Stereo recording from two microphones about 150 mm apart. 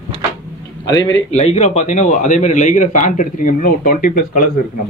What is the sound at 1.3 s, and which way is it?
A man's voice, 50° left (ahead or behind).